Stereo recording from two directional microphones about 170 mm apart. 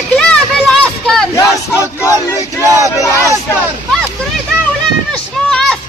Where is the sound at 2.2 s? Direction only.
15° left (ahead or behind).